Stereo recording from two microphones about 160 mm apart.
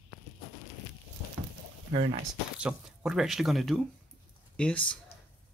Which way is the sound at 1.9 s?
40° right (ahead or behind).